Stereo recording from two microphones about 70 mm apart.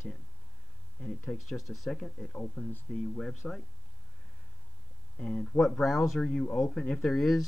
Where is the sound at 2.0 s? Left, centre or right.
Centre.